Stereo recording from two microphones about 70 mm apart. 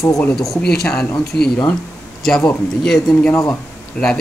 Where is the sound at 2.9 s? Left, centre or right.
Centre.